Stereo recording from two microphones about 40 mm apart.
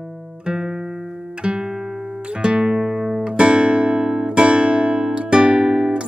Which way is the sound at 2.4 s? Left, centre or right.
Right.